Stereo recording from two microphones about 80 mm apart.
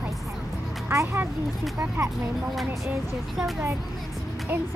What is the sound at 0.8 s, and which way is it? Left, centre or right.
Speech, right.